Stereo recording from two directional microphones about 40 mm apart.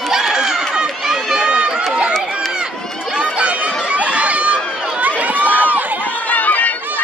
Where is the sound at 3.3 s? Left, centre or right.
Right.